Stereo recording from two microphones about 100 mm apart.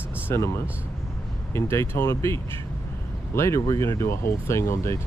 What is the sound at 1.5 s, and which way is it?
Speech, 25° left (ahead or behind).